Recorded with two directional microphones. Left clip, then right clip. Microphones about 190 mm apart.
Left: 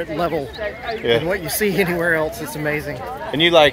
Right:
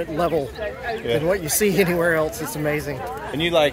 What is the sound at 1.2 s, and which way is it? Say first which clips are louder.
Speech: even; 25° right (ahead or behind).